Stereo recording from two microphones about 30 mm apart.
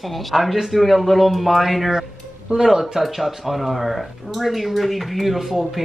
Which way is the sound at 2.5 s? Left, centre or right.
Centre.